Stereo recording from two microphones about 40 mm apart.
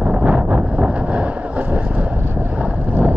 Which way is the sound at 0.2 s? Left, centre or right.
Right.